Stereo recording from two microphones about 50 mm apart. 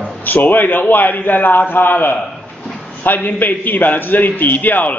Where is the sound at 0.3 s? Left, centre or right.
Left.